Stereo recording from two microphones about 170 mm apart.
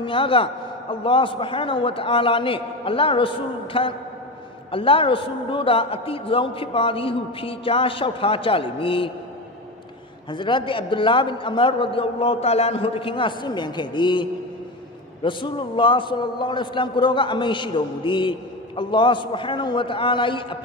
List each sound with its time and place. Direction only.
0.0 s a man's voice: 30° left (ahead or behind)
10.3 s a man's voice: 30° left (ahead or behind)
15.2 s a man's voice: 30° left (ahead or behind)